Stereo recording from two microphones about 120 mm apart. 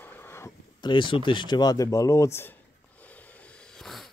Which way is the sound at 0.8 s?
40° left (ahead or behind).